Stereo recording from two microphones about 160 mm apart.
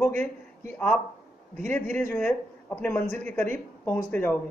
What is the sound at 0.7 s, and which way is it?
Speech, 5° left (ahead or behind).